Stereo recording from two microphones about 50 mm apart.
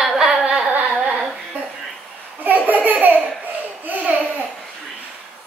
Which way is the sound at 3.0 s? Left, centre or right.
Right.